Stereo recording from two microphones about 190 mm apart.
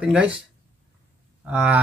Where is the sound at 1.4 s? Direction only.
5° right (ahead or behind).